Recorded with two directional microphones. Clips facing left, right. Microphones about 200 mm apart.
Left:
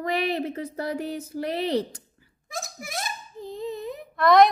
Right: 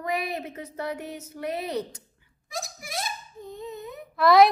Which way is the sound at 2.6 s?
50° left (ahead or behind).